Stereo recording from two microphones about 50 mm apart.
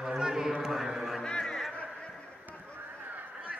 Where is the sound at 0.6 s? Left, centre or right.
Centre.